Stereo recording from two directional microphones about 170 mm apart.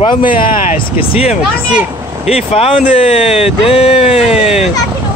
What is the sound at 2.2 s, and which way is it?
Speech, 35° left (ahead or behind).